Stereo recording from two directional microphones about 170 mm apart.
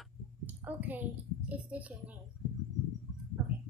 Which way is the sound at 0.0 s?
10° right (ahead or behind).